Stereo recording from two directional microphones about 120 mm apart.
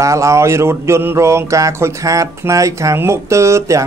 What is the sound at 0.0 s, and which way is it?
Mantra, 25° right (ahead or behind).